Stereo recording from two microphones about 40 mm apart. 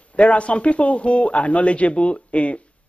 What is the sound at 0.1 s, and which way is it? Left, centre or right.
A man's voice, left.